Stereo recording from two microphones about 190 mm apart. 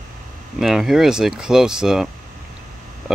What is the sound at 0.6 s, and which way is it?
Speech, centre (ahead or behind).